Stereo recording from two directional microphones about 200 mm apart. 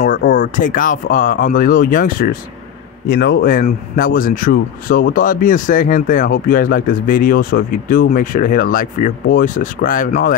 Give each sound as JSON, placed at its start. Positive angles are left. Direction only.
{"t": 0.0, "sound": "speech", "side_deg": 45}